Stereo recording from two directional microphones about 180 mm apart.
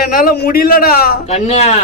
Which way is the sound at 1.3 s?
40° left (ahead or behind).